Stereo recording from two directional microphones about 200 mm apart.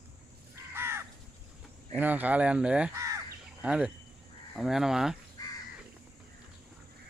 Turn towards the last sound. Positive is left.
turn(degrees=20)  # may be behind; listen again after turning